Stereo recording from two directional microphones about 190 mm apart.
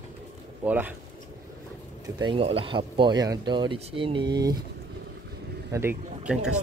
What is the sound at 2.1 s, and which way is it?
Speech, 25° right (ahead or behind).